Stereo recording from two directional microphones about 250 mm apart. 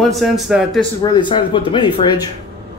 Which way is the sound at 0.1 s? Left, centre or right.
Centre.